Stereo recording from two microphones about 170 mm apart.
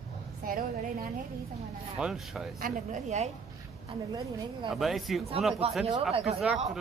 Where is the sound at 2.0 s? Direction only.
5° right (ahead or behind).